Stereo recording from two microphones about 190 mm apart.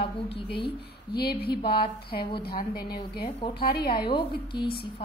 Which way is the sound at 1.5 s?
25° left (ahead or behind).